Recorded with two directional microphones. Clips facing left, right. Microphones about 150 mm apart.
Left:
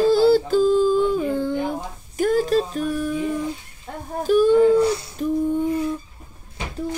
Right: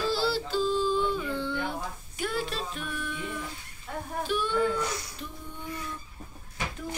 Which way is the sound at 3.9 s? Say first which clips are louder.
Left 3 dB; 35° left (ahead or behind).